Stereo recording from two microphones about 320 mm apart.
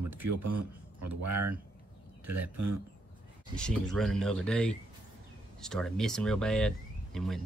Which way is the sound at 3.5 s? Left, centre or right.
Centre.